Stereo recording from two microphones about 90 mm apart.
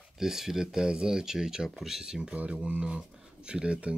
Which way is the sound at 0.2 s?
5° right (ahead or behind).